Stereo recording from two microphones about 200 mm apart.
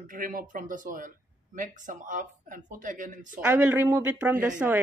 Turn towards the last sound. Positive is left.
turn(degrees=-10)  # may be behind; listen again after turning